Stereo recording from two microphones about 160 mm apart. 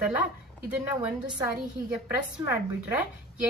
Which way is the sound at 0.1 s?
10° right (ahead or behind).